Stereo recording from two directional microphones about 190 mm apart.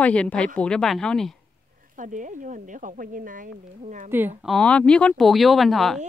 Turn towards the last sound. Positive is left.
turn(degrees=0)  # may be behind; listen again after turning